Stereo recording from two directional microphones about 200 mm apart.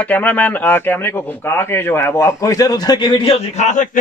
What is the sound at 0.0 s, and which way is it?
Speech, 10° left (ahead or behind).